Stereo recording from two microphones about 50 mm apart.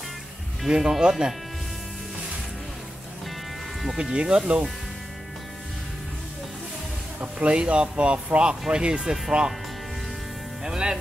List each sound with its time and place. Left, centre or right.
0.7 s speech: centre
4.0 s speech: centre
7.3 s speech: right
10.6 s speech: centre